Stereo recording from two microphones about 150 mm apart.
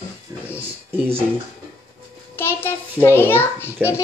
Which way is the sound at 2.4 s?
15° left (ahead or behind).